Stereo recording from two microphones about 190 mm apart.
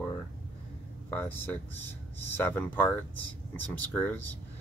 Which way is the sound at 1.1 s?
10° left (ahead or behind).